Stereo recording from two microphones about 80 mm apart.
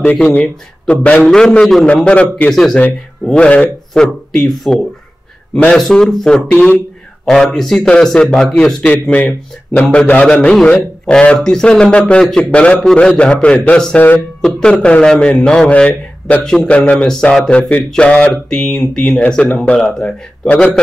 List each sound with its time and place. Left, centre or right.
0.0 s speech: centre
2.5 s speech: centre
3.3 s speech: centre
4.0 s speech: centre
5.5 s a man's voice: centre
5.8 s speech: centre
13.9 s speech: left
14.4 s speech: centre
18.3 s speech: centre